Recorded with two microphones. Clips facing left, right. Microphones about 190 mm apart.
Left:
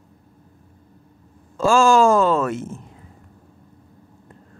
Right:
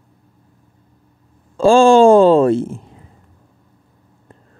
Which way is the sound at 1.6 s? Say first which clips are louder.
Right 6 dB; 30° right (ahead or behind).